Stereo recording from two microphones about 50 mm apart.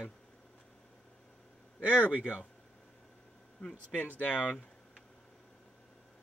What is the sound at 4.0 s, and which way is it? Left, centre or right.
Speech, left.